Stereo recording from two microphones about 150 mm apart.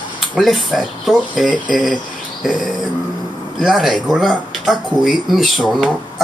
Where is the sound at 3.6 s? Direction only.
Centre (ahead or behind).